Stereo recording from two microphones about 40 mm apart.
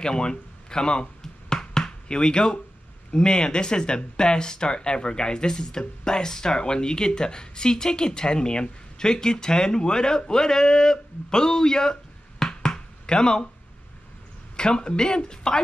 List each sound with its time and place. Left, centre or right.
0.0 s a sound: left
3.1 s speech: left
14.6 s speech: left